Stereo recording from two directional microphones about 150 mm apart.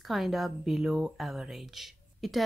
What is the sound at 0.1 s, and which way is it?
Speech, centre (ahead or behind).